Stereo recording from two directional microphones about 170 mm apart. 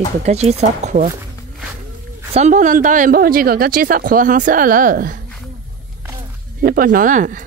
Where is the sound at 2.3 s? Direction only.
45° right (ahead or behind).